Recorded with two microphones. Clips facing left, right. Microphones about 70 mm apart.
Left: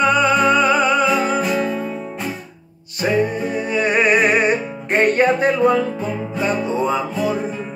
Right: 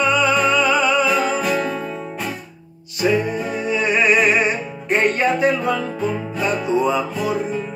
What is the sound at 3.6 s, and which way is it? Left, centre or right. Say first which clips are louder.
Music: even; left.